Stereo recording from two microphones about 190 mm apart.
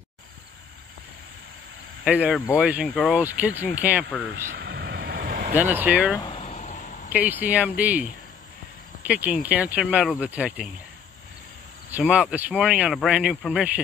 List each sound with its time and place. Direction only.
2.0 s speech: 5° right (ahead or behind)
2.9 s speech: 5° left (ahead or behind)
3.2 s speech: 10° right (ahead or behind)
4.4 s vehicle: 50° right (ahead or behind)
5.5 s speech: 10° right (ahead or behind)
6.1 s a sound: 30° left (ahead or behind)
7.1 s speech: 10° right (ahead or behind)
11.9 s speech: 5° right (ahead or behind)